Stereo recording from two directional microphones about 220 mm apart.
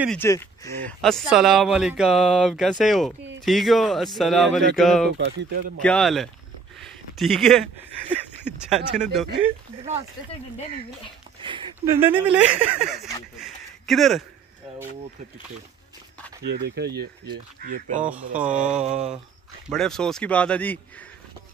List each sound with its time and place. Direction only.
0.2 s speech: 10° left (ahead or behind)
1.0 s speech: centre (ahead or behind)
5.1 s speech: 50° right (ahead or behind)
5.8 s speech: 5° left (ahead or behind)
6.8 s a sound: centre (ahead or behind)
8.5 s speech: centre (ahead or behind)
11.4 s a sound: 20° right (ahead or behind)
11.9 s speech: 10° right (ahead or behind)
16.4 s speech: 50° right (ahead or behind)
18.0 s speech: 5° right (ahead or behind)
18.8 s a sound: 30° right (ahead or behind)
19.7 s speech: centre (ahead or behind)